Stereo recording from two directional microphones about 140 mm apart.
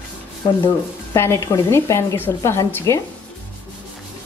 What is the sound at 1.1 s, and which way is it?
A woman's voice, 20° left (ahead or behind).